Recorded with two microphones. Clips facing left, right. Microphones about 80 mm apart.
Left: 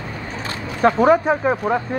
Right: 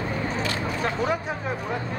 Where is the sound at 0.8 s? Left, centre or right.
Left.